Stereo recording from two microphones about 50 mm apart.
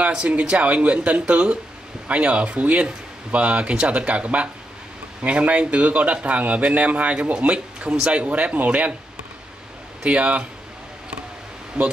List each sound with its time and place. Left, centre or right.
0.0 s speech: right
10.0 s speech: right
11.7 s speech: centre